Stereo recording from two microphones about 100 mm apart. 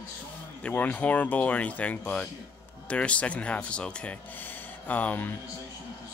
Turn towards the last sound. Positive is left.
turn(degrees=15)  # may be behind; listen again after turning